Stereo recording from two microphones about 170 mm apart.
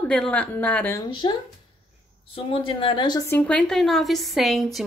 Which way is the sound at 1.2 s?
25° left (ahead or behind).